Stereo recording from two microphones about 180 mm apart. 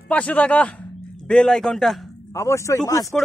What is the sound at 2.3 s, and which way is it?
Speech, 15° left (ahead or behind).